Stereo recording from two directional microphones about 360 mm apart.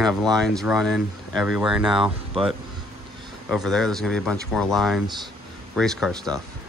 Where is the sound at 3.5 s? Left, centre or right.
Centre.